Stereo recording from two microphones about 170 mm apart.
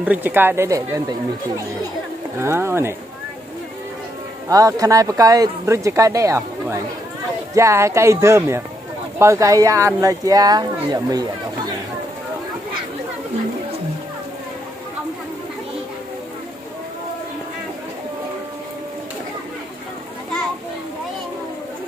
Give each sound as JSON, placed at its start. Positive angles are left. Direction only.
{"t": 0.0, "sound": "speech", "side_deg": -10}
{"t": 2.3, "sound": "speech", "side_deg": -15}
{"t": 4.5, "sound": "speech", "side_deg": -20}